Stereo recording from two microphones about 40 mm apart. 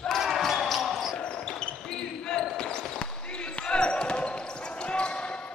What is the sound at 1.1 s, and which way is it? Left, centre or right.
Basketball bounce, left.